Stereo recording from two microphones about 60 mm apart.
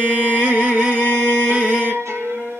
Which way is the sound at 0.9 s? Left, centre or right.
Left.